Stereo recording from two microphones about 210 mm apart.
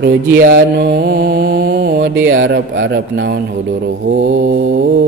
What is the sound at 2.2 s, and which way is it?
A man's voice, 65° right (ahead or behind).